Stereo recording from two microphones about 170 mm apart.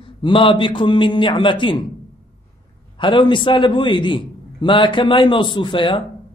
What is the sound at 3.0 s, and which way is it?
A man's voice, 30° left (ahead or behind).